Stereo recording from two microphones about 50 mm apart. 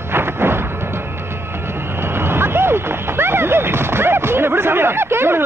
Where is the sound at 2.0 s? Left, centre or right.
Right.